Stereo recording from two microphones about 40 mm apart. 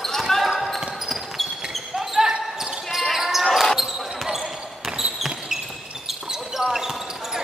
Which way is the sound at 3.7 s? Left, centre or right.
Centre.